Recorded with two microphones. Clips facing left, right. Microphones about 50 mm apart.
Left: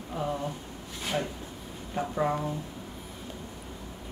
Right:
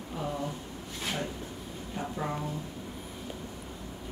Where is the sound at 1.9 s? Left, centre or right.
Left.